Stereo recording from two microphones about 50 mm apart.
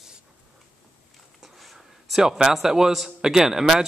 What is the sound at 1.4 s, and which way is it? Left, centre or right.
A man's voice, centre.